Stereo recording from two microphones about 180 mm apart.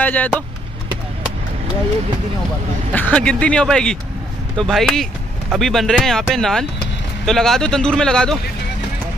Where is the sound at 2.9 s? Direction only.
10° left (ahead or behind).